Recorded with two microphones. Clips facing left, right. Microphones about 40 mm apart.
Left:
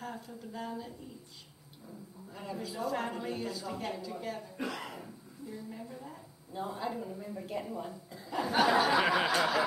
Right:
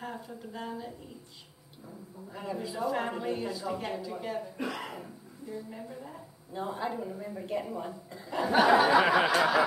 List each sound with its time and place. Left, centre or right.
0.0 s speech: centre
2.3 s speech: centre